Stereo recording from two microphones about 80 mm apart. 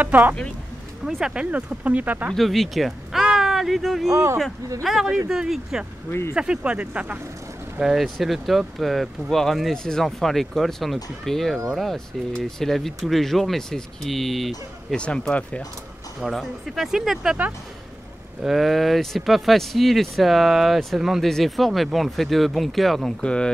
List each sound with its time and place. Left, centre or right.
0.0 s speech: right
2.3 s speech: centre
4.1 s speech: right
5.3 s speech: centre
7.8 s speech: centre
14.9 s speech: centre
16.2 s speech: centre
18.4 s speech: centre
23.2 s speech: centre